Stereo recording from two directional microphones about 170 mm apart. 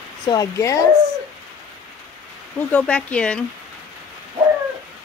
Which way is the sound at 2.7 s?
10° left (ahead or behind).